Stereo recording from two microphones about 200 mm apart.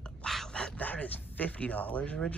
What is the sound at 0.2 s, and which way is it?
Speech, 5° left (ahead or behind).